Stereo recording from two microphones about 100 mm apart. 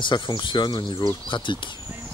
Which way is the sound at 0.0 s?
50° left (ahead or behind).